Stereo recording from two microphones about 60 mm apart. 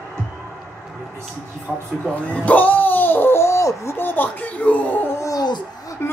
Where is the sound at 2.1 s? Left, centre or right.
Left.